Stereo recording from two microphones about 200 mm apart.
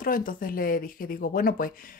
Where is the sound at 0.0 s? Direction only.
45° left (ahead or behind).